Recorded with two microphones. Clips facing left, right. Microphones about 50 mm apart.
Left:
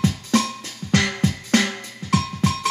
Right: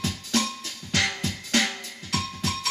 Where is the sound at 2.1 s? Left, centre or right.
Left.